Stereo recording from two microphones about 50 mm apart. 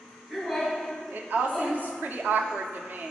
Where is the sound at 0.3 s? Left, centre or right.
Centre.